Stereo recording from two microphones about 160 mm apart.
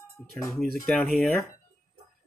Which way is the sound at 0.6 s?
Centre (ahead or behind).